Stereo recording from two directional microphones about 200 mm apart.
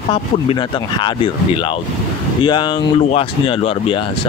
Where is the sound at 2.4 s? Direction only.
20° left (ahead or behind).